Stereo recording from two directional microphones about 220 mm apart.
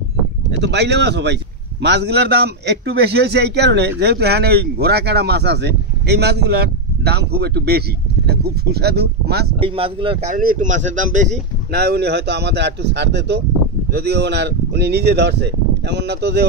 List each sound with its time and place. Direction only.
0.5 s a man's voice: 50° right (ahead or behind)
9.6 s speech: 25° right (ahead or behind)
10.3 s a man's voice: 35° right (ahead or behind)